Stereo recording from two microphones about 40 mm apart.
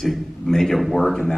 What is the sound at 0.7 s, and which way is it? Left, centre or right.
Speech, centre.